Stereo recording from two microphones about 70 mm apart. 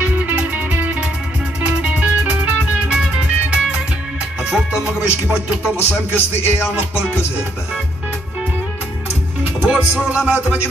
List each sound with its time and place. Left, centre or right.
0.0 s music: right
5.8 s music: left
9.4 s music: centre